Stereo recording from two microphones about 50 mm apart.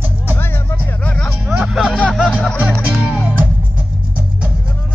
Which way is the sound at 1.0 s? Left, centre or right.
Centre.